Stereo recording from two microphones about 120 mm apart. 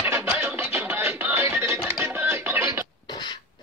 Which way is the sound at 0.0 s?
15° right (ahead or behind).